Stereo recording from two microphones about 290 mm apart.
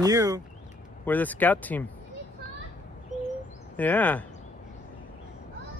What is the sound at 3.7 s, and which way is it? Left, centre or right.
Speech, centre.